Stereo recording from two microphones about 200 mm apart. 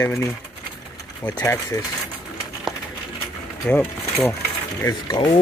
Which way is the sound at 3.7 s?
10° left (ahead or behind).